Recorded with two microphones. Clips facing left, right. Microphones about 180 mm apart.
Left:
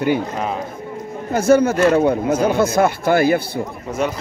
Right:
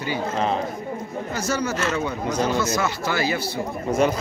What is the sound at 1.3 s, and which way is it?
Speech, 55° left (ahead or behind).